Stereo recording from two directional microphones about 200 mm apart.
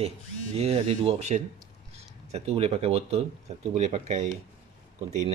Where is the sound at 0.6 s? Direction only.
30° right (ahead or behind).